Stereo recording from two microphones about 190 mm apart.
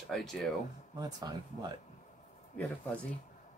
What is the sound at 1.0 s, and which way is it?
Speech, 20° right (ahead or behind).